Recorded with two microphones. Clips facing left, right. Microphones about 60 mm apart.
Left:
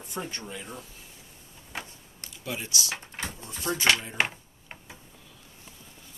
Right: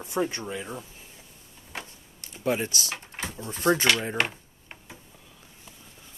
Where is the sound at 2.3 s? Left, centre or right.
Right.